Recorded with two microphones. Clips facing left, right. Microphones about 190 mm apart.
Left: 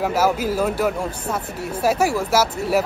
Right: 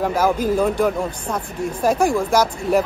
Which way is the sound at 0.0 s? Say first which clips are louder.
Right 1 dB; 5° left (ahead or behind).